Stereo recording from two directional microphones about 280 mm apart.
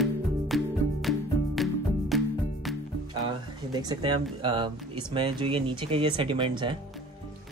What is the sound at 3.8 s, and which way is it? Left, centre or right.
Speech, centre.